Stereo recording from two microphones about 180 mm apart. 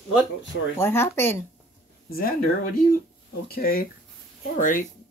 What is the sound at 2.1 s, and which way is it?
Speech, 55° left (ahead or behind).